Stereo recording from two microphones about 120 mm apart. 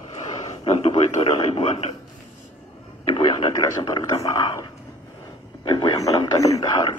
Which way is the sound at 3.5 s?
30° left (ahead or behind).